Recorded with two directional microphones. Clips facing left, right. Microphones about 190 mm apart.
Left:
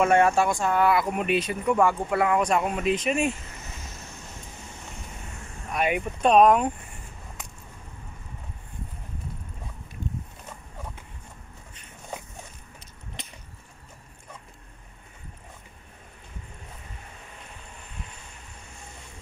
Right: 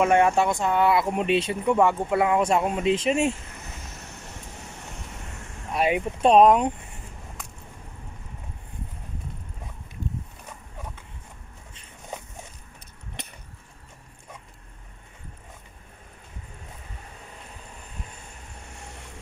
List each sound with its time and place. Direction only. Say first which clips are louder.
0.0 s speech: even; 15° right (ahead or behind)
5.7 s speech: right 2 dB; 25° right (ahead or behind)